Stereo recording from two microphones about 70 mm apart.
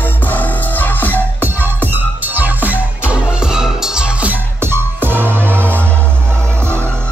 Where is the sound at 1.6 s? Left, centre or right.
Right.